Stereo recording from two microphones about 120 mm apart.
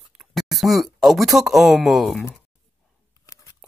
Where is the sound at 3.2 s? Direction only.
30° left (ahead or behind).